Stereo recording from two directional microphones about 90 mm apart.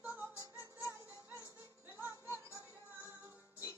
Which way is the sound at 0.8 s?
30° left (ahead or behind).